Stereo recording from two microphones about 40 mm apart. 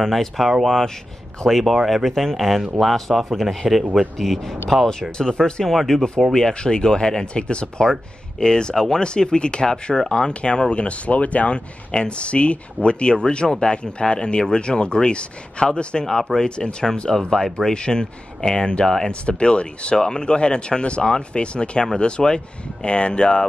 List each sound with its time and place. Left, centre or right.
0.0 s speech: centre
1.5 s a man's voice: centre
2.0 s a man's voice: centre
5.7 s a man's voice: centre
6.3 s speech: centre